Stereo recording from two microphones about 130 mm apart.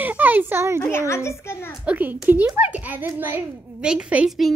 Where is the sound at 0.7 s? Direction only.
20° left (ahead or behind).